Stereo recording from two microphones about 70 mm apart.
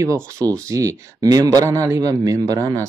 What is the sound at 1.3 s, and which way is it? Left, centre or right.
A man's voice, right.